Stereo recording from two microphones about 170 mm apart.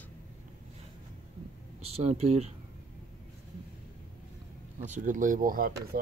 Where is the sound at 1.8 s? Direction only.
35° right (ahead or behind).